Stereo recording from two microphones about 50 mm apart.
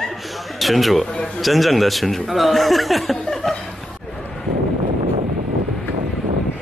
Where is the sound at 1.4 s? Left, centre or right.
Centre.